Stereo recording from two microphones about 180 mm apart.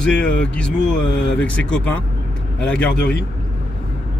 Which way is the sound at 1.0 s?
80° left.